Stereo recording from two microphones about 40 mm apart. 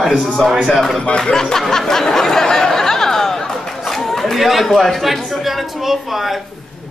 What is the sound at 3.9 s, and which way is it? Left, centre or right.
Chatter, centre.